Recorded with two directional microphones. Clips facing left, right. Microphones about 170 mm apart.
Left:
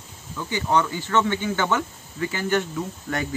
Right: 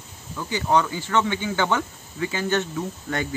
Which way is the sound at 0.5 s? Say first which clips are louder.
Right 1 dB; 10° right (ahead or behind).